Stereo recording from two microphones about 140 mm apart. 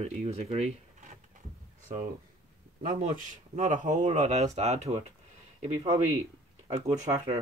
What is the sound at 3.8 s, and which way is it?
Speech, 60° right (ahead or behind).